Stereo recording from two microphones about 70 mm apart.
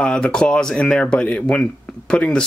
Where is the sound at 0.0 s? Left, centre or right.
Centre.